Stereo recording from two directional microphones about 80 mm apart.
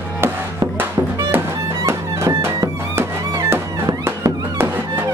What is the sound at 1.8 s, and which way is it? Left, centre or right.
Music, right.